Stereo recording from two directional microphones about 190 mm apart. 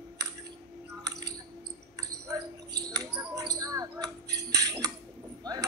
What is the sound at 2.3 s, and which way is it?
Basketball bounce, 20° right (ahead or behind).